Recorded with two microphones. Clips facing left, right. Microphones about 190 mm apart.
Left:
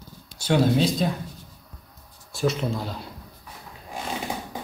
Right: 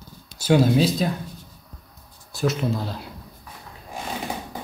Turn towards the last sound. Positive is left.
turn(degrees=0)  # may be behind; listen again after turning